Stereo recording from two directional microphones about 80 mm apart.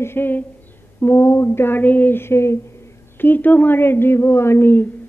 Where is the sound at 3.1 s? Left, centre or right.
Left.